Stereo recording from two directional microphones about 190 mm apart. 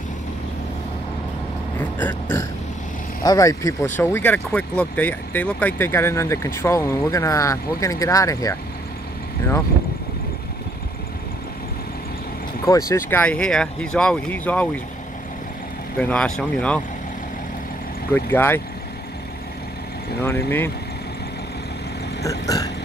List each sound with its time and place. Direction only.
1.8 s speech: 10° left (ahead or behind)
12.6 s speech: 15° left (ahead or behind)
16.0 s speech: 5° left (ahead or behind)
18.1 s speech: 10° left (ahead or behind)
20.2 s speech: 15° left (ahead or behind)
22.2 s vehicle: 20° left (ahead or behind)